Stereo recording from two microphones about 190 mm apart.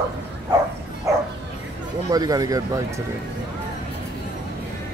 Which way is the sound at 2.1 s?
20° right (ahead or behind).